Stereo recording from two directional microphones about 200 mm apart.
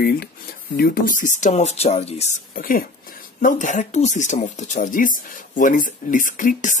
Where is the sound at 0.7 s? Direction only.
45° left (ahead or behind).